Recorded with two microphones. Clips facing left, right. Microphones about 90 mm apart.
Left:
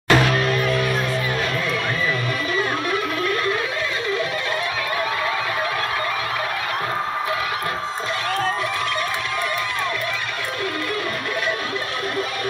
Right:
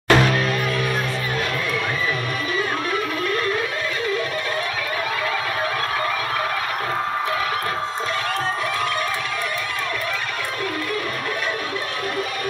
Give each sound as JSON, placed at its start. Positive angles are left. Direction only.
{"t": 0.1, "sound": "music", "side_deg": 0}